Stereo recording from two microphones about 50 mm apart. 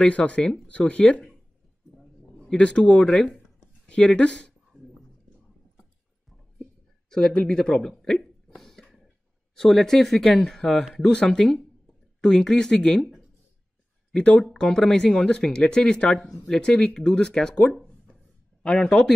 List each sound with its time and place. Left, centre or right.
0.0 s speech: left
0.4 s speech: centre
0.7 s speech: left
2.3 s speech: left
3.3 s a sound: left
7.1 s speech: centre
7.9 s a sound: centre
9.6 s speech: centre
14.1 s speech: left
14.4 s speech: centre
16.3 s speech: centre
16.8 s speech: centre